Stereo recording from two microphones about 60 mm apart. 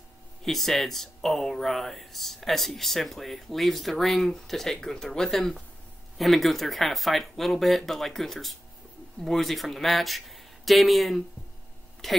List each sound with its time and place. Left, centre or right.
0.4 s speech: centre